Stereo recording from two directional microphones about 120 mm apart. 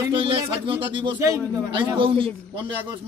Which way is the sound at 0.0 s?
45° right (ahead or behind).